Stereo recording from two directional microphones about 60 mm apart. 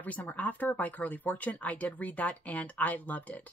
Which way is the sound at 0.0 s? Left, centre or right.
Left.